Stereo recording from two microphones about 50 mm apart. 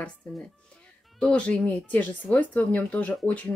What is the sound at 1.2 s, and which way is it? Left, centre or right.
Speech, left.